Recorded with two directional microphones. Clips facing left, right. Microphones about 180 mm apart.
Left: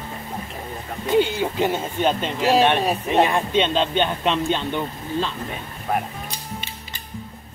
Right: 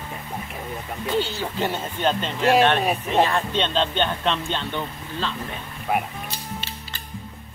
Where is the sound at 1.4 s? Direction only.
10° left (ahead or behind).